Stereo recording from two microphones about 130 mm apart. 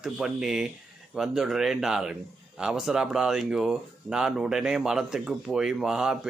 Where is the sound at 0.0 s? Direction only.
5° right (ahead or behind).